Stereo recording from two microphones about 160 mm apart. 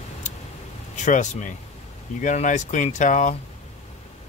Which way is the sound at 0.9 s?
50° left (ahead or behind).